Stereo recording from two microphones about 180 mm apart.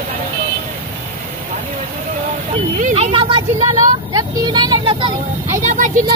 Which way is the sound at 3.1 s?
25° right (ahead or behind).